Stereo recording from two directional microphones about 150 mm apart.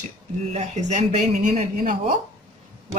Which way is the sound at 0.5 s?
50° right (ahead or behind).